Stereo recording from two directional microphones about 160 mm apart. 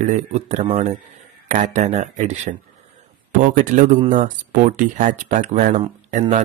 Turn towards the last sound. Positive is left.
turn(degrees=-45)  # may be behind; listen again after turning